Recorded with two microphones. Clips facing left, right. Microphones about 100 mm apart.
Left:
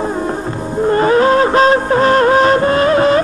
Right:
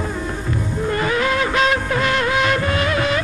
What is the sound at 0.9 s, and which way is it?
Music, 35° left (ahead or behind).